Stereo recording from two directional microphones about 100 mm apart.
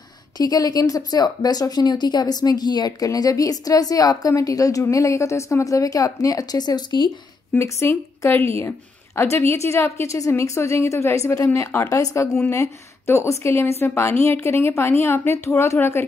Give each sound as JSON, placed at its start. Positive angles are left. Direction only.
{"t": 0.4, "sound": "speech", "side_deg": 40}
{"t": 7.5, "sound": "a woman's voice", "side_deg": 25}